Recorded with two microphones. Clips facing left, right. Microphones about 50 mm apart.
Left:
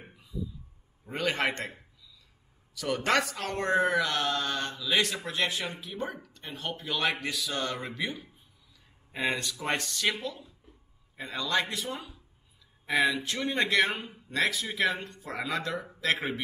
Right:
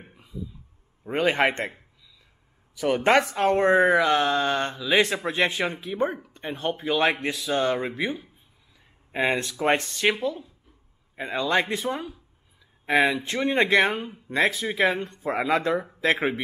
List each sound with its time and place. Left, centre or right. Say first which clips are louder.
1.2 s speech: right 7 dB; right
2.7 s speech: right 7 dB; right